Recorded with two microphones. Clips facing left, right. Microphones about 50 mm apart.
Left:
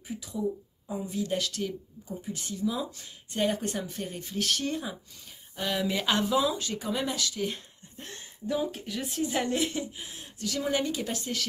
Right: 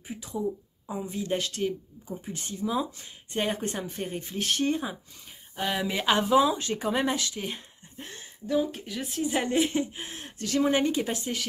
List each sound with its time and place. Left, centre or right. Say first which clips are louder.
0.1 s speech: right 1 dB; right; by 6.3 s centre
6.3 s speech: right 5 dB; right
8.0 s speech: left 1 dB; centre
9.4 s speech: right 5 dB; right
9.9 s speech: right 4 dB; right